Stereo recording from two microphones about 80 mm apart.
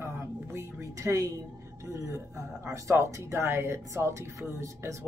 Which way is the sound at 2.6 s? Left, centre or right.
Right.